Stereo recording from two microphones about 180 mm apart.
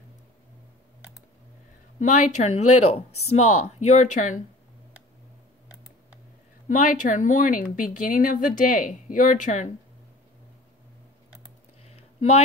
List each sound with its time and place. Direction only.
2.0 s speech: 45° left (ahead or behind)
6.7 s a woman's voice: 45° left (ahead or behind)
11.8 s a sound: 35° left (ahead or behind)